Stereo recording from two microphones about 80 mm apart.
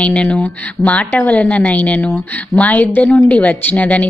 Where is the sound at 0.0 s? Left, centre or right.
Centre.